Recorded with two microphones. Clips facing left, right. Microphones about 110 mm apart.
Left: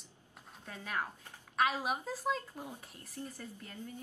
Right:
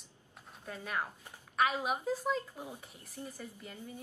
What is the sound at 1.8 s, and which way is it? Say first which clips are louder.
Speech: right 2 dB; 5° left (ahead or behind).